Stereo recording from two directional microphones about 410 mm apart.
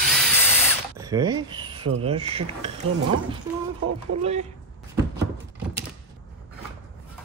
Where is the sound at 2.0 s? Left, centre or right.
Centre.